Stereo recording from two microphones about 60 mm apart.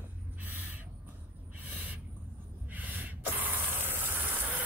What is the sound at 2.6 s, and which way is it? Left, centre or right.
Snort, right.